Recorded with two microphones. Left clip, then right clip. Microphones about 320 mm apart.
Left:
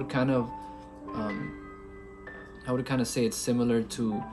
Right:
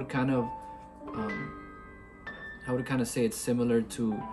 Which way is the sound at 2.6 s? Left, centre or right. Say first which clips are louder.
Left 2 dB; centre.